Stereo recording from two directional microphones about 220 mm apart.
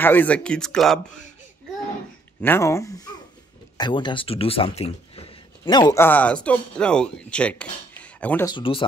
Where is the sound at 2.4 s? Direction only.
10° left (ahead or behind).